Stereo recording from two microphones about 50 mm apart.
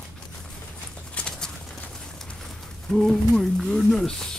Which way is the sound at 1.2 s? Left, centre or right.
Left.